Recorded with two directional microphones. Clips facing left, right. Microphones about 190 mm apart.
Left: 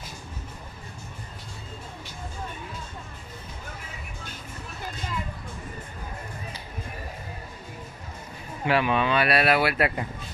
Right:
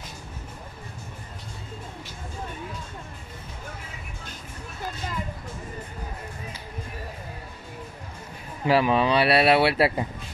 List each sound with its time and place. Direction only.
8.6 s speech: 35° right (ahead or behind)